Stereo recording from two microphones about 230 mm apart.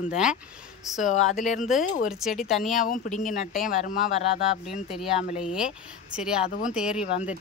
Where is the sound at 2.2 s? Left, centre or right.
Centre.